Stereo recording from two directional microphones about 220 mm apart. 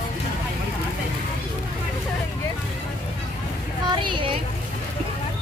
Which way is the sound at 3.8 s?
20° right (ahead or behind).